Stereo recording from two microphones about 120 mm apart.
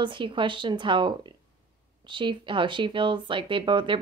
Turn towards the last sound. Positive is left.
turn(degrees=-45)  # may be behind; listen again after turning